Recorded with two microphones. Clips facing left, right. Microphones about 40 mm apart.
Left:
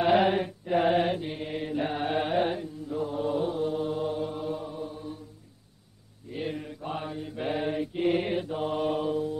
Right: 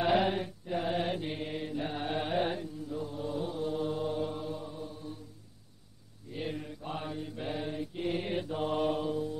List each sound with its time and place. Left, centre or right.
0.0 s mantra: centre
1.1 s mantra: centre
1.5 s mantra: left
2.9 s mantra: left
3.7 s mantra: centre
4.5 s mantra: centre
6.3 s mantra: centre
7.3 s mantra: left
8.3 s mantra: centre